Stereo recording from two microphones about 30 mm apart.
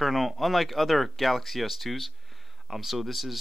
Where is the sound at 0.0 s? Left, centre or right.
Centre.